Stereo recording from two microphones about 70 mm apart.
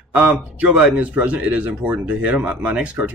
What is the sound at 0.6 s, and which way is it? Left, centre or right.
A man's voice, right.